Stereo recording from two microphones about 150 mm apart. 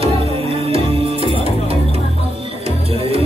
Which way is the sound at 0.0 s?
40° right (ahead or behind).